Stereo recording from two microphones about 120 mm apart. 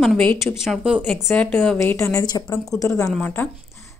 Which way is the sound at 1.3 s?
5° left (ahead or behind).